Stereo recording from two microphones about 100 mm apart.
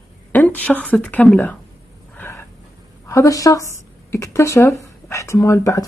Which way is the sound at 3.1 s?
35° left (ahead or behind).